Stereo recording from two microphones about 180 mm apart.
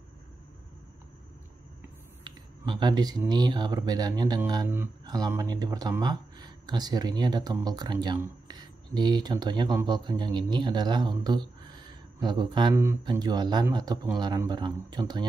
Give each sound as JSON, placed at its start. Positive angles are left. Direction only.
{"t": 2.2, "sound": "speech", "side_deg": -25}